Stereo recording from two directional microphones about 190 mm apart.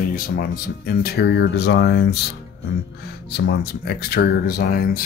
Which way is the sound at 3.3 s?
60° left (ahead or behind).